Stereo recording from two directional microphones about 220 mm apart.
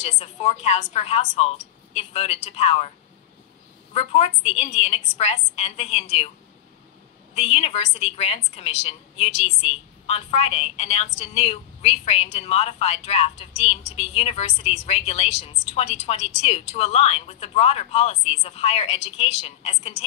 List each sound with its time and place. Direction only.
0.0 s a woman's voice: 25° left (ahead or behind)
3.9 s a woman's voice: 30° left (ahead or behind)
7.3 s a woman's voice: 25° left (ahead or behind)